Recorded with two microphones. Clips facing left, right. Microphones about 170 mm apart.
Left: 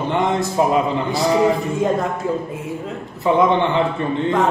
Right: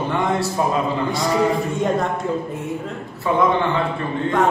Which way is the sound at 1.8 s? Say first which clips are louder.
Left 2 dB; centre (ahead or behind).